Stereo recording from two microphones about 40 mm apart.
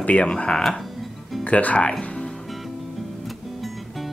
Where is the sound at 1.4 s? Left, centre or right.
Left.